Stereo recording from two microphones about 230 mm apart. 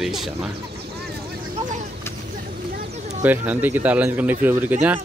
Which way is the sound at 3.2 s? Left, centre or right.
Centre.